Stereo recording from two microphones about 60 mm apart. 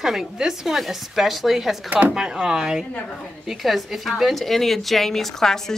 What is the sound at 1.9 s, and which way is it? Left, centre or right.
Speech, right.